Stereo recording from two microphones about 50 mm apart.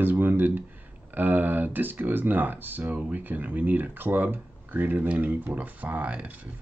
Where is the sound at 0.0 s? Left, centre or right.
Right.